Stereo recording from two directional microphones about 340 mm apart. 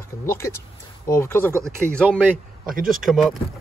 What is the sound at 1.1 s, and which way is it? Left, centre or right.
Speech, centre.